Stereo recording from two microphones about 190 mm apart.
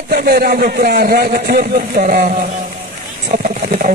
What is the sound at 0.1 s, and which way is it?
A man's voice, 50° right (ahead or behind).